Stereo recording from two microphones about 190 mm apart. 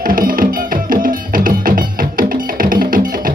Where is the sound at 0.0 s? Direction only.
50° right (ahead or behind).